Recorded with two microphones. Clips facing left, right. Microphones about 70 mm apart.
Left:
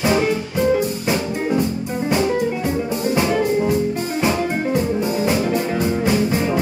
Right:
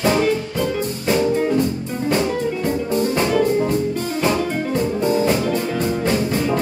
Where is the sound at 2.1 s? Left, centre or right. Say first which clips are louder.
Left 1 dB; centre.